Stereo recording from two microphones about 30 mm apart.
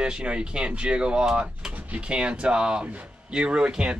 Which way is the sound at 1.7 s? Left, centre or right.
Right.